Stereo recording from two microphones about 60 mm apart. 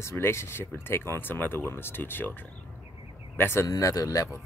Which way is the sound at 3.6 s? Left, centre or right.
Left.